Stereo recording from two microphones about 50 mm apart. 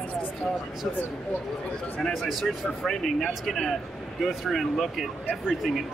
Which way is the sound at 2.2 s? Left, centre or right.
Centre.